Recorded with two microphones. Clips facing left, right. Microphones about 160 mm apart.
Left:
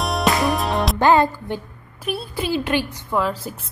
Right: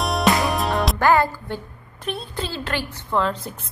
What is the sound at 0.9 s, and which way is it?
Music, 20° left (ahead or behind).